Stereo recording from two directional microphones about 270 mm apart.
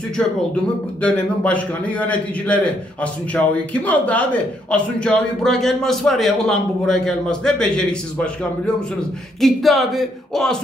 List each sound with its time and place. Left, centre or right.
0.2 s a man's voice: centre